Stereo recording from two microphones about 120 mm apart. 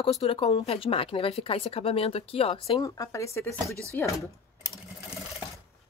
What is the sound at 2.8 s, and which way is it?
Speech, 30° left (ahead or behind).